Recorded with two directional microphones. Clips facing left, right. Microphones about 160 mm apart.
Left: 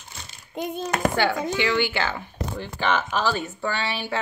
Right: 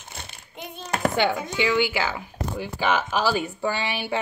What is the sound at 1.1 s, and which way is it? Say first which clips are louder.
Speech: left 1 dB; 20° right (ahead or behind).